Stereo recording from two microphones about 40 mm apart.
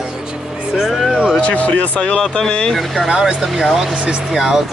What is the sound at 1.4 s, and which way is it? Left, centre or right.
Speech, left.